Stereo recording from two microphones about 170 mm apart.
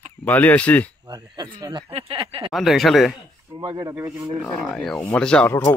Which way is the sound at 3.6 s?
25° right (ahead or behind).